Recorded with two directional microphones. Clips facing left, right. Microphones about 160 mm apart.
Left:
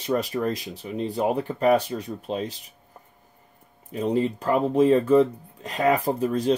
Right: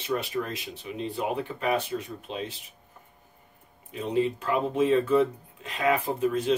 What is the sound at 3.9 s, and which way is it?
Speech, 40° left (ahead or behind).